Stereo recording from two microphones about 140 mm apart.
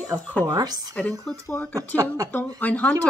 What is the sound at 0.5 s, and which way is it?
Speech, 30° right (ahead or behind).